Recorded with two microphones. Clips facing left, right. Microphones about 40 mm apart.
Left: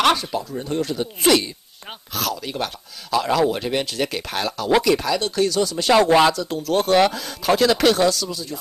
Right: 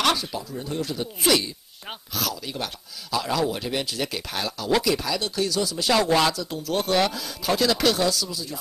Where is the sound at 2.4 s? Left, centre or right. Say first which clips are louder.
Left 5 dB; left.